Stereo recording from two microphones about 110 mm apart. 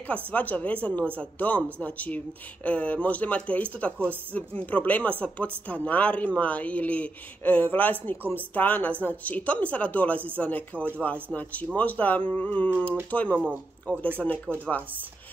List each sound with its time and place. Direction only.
0.3 s speech: 15° left (ahead or behind)